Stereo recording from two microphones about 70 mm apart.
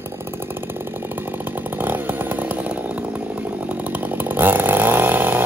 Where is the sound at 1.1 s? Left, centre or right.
Right.